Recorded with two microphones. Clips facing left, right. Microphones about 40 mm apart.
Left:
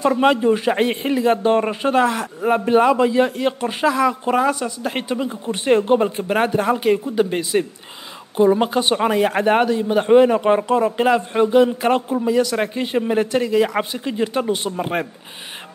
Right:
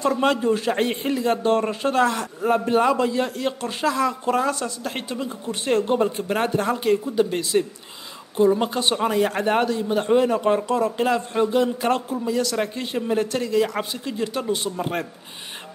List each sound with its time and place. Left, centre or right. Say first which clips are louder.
0.0 s speech: left 4 dB; left